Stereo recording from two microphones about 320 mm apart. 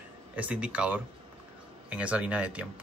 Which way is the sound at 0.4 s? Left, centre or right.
Centre.